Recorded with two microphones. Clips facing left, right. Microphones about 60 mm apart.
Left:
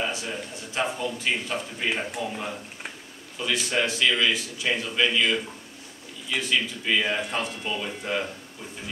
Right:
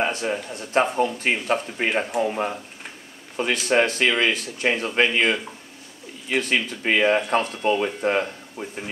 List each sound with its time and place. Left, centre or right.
0.0 s speech: right